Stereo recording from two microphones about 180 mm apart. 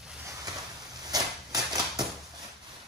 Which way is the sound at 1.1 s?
20° right (ahead or behind).